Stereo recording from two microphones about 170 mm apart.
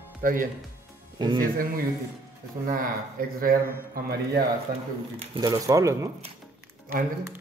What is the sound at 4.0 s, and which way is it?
Speech, 65° right (ahead or behind).